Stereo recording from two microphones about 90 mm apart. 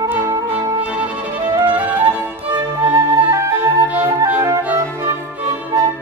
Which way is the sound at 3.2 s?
35° right (ahead or behind).